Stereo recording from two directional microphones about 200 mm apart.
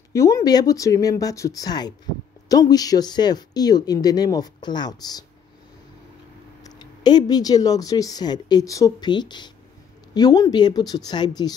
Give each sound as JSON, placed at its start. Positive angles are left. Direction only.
{"t": 0.1, "sound": "speech", "side_deg": 15}
{"t": 6.6, "sound": "speech", "side_deg": 20}